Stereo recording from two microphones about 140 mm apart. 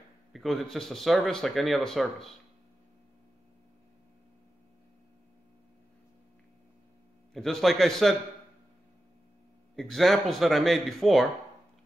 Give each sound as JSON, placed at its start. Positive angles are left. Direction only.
{"t": 0.3, "sound": "speech", "side_deg": 0}
{"t": 7.3, "sound": "speech", "side_deg": 0}
{"t": 9.8, "sound": "speech", "side_deg": 0}